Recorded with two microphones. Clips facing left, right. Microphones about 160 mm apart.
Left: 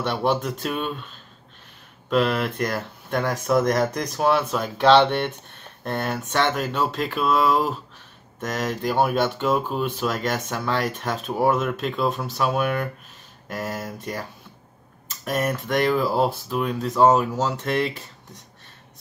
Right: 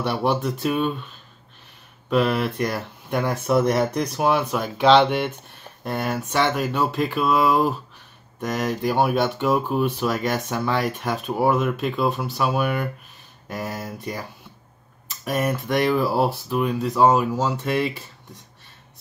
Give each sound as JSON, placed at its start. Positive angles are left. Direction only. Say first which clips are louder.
{"t": 0.0, "sound": "speech", "louder": "right 1 dB", "side_deg": -10}
{"t": 2.0, "sound": "speech", "louder": "right 1 dB", "side_deg": -15}
{"t": 3.2, "sound": "speech", "louder": "right 1 dB", "side_deg": -5}
{"t": 8.4, "sound": "speech", "louder": "right 2 dB", "side_deg": -15}
{"t": 11.2, "sound": "speech", "louder": "right 1 dB", "side_deg": 0}
{"t": 15.2, "sound": "speech", "louder": "right 1 dB", "side_deg": -5}